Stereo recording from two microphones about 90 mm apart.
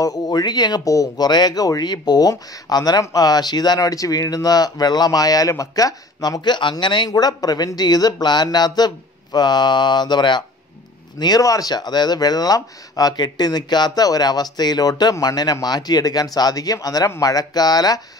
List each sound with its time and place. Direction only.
0.0 s speech: 45° left (ahead or behind)
7.1 s speech: 45° left (ahead or behind)